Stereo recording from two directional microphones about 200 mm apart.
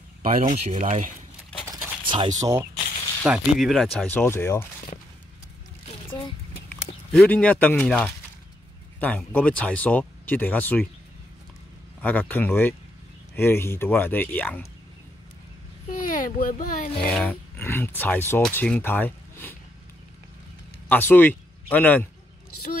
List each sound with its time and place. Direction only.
0.7 s speech: 35° right (ahead or behind)
1.7 s a sound: 20° right (ahead or behind)
3.3 s speech: centre (ahead or behind)
6.0 s speech: 20° left (ahead or behind)
6.7 s speech: 5° left (ahead or behind)
12.0 s speech: 10° left (ahead or behind)
15.9 s speech: 40° left (ahead or behind)
17.0 s speech: 5° left (ahead or behind)
20.9 s speech: 10° left (ahead or behind)